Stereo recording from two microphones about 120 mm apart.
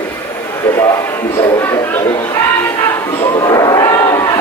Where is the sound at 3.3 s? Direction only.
30° left (ahead or behind).